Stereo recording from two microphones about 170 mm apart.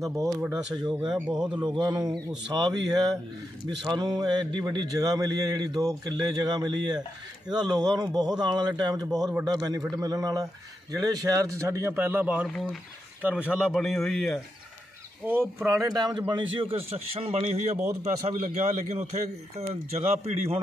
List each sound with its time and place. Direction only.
0.1 s speech: 15° right (ahead or behind)
0.5 s a man's voice: 5° right (ahead or behind)
1.6 s speech: 25° right (ahead or behind); by 12.4 s 10° right (ahead or behind)
13.5 s a man's voice: centre (ahead or behind)
15.2 s a man's voice: 10° right (ahead or behind); by 20.6 s 35° right (ahead or behind)